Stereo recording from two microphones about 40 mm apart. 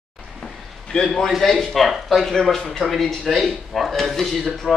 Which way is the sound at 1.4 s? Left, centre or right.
Centre.